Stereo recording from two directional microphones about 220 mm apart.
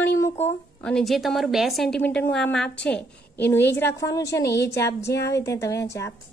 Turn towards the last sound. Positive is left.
turn(degrees=10)  # may be behind; listen again after turning